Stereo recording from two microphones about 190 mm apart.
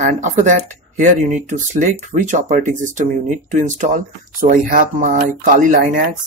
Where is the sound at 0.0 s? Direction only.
40° right (ahead or behind).